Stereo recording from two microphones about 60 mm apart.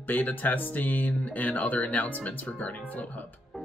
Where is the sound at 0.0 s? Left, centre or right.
Left.